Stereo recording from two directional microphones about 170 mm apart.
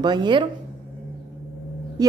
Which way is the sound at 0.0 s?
25° right (ahead or behind).